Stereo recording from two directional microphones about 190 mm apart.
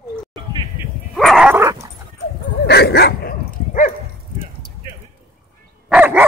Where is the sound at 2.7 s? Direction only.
60° left (ahead or behind).